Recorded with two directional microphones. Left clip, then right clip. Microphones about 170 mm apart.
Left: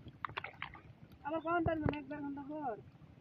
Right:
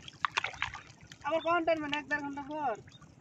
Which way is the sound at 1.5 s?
30° left (ahead or behind).